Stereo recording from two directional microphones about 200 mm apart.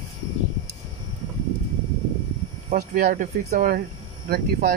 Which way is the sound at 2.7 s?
40° right (ahead or behind).